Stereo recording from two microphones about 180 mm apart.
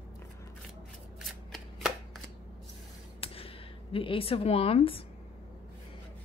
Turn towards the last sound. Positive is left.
turn(degrees=30)  # may be behind; listen again after turning